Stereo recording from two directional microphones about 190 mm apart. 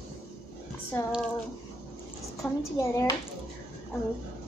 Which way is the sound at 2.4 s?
15° left (ahead or behind).